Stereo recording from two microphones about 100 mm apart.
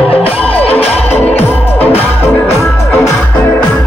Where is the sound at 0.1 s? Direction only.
75° left (ahead or behind).